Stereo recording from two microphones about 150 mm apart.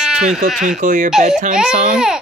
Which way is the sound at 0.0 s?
5° right (ahead or behind).